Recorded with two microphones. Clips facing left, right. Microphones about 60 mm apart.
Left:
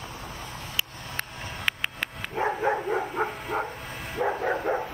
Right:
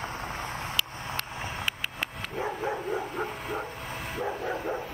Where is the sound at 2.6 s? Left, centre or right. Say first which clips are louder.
Left 5 dB; left.